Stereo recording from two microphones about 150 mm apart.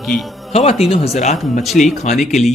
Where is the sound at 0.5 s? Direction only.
40° left (ahead or behind).